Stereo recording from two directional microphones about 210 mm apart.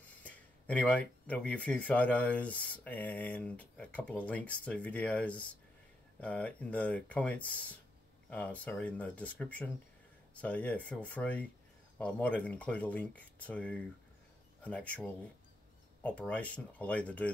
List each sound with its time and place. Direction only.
0.2 s speech: 5° left (ahead or behind)